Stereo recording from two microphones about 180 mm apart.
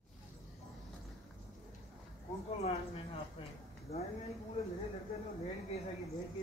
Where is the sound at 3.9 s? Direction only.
35° left (ahead or behind).